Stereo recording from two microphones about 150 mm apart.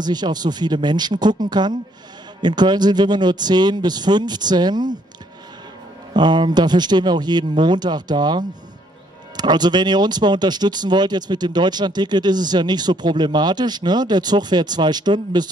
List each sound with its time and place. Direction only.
0.0 s speech: 30° right (ahead or behind)
6.1 s speech: 30° right (ahead or behind)